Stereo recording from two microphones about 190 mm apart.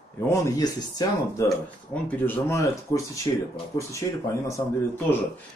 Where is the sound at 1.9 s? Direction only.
10° left (ahead or behind).